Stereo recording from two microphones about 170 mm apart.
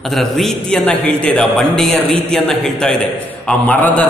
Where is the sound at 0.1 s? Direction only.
Centre (ahead or behind).